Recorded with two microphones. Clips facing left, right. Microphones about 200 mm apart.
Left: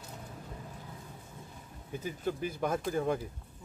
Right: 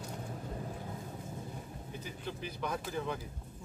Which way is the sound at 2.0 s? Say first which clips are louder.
Left 9 dB; 50° left (ahead or behind).